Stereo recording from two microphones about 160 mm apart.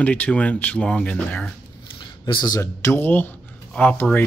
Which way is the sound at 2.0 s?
30° left (ahead or behind).